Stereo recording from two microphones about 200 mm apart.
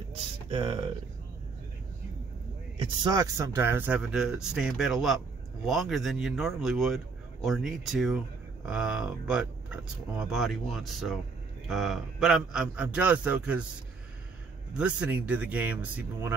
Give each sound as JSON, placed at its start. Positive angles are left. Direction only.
{"t": 0.1, "sound": "a sound", "side_deg": -25}
{"t": 2.8, "sound": "speech", "side_deg": -20}
{"t": 14.7, "sound": "speech", "side_deg": -5}